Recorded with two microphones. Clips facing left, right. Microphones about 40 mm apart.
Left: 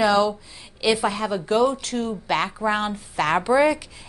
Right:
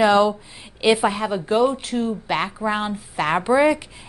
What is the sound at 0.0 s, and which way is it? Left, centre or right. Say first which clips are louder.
Speech: right 3 dB; right.